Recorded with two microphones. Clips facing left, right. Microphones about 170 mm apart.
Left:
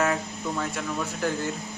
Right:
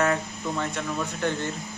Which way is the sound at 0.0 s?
Centre (ahead or behind).